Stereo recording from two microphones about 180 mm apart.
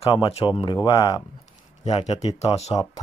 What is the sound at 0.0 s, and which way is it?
Speech, 30° left (ahead or behind).